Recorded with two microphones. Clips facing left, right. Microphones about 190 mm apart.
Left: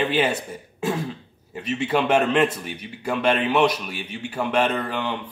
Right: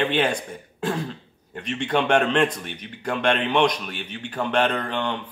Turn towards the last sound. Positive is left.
turn(degrees=5)  # may be behind; listen again after turning